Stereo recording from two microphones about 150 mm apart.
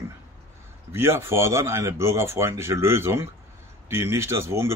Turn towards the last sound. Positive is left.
turn(degrees=-20)  # may be behind; listen again after turning